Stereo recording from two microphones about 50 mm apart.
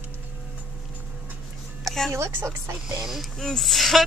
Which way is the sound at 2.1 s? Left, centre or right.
Right.